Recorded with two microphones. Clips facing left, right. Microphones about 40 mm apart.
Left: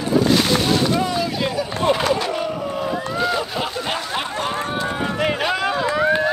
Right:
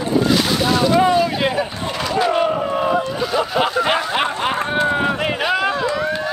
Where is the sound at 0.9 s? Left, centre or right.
Right.